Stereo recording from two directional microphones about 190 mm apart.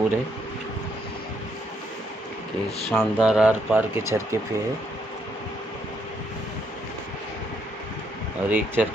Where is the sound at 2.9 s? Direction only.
5° right (ahead or behind).